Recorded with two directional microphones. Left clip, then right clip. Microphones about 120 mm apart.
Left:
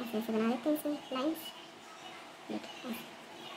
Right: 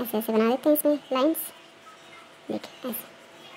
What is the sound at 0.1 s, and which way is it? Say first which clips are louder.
Speech: right 10 dB; 65° right (ahead or behind).